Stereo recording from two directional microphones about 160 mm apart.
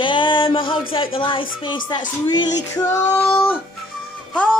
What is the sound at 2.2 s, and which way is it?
Music, 25° left (ahead or behind).